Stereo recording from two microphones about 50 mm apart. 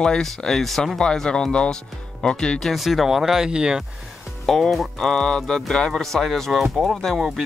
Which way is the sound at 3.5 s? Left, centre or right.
Centre.